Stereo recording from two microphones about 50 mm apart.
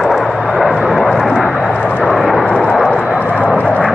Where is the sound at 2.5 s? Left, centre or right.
Left.